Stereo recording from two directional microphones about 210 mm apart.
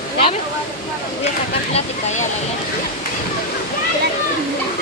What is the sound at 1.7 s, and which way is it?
Speech, 35° left (ahead or behind).